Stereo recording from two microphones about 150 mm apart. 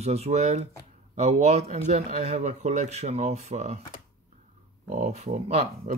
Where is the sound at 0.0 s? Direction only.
45° right (ahead or behind).